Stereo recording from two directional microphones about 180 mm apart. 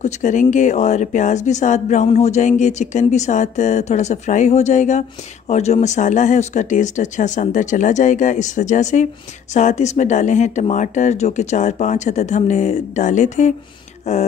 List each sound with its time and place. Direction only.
0.0 s speech: 45° left (ahead or behind)